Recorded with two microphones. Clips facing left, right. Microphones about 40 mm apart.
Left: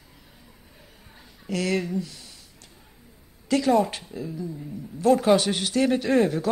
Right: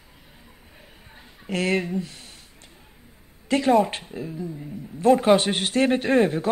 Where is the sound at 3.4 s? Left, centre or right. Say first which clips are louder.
Right 2 dB; right.